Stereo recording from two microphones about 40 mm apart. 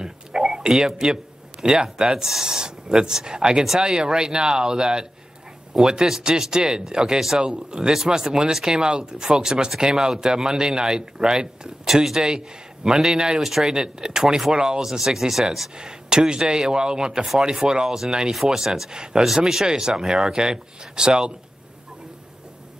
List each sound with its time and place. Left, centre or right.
0.0 s a man's voice: centre
11.9 s speech: centre
12.2 s speech: centre
13.4 s speech: centre
14.9 s speech: centre
15.8 s speech: centre